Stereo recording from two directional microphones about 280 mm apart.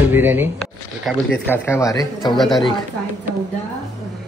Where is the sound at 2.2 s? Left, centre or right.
Centre.